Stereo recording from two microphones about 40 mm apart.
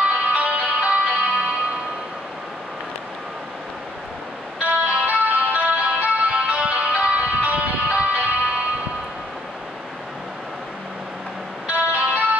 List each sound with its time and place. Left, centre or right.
0.1 s music: right
4.6 s music: right
11.6 s music: right